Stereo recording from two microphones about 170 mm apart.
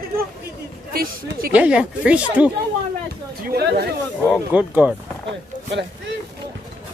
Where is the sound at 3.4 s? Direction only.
65° right (ahead or behind).